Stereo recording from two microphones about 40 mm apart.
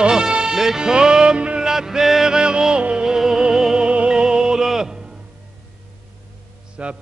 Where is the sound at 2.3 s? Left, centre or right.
Right.